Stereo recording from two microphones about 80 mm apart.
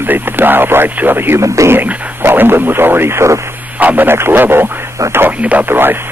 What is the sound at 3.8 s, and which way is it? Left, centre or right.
Speech, right.